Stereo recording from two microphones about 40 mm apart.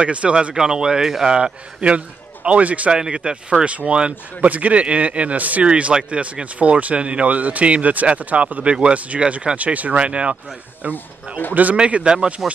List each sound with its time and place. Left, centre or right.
0.0 s speech: right
0.6 s a man's voice: centre; by 2.9 s right
2.9 s a man's voice: right
10.8 s speech: right
11.7 s speech: right